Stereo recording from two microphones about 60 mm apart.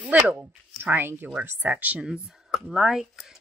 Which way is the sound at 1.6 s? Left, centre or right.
Right.